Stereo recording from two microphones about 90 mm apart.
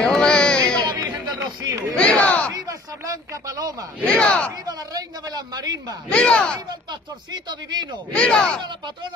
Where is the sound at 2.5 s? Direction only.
40° right (ahead or behind).